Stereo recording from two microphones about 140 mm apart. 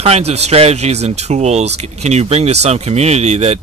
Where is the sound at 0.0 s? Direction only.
50° right (ahead or behind).